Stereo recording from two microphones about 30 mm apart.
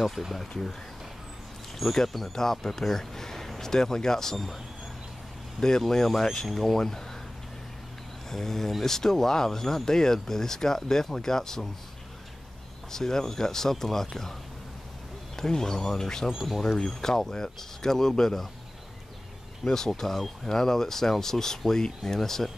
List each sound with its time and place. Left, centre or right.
0.5 s speech: centre
1.8 s speech: centre
5.6 s speech: centre
8.3 s speech: centre
12.9 s speech: centre
15.3 s speech: centre
16.3 s speech: centre
16.6 s speech: centre
19.6 s speech: centre